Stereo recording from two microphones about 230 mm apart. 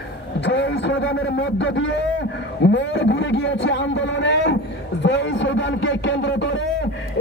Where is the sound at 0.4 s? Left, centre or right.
Left.